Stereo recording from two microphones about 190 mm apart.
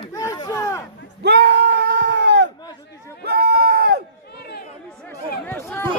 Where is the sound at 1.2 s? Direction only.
60° right (ahead or behind).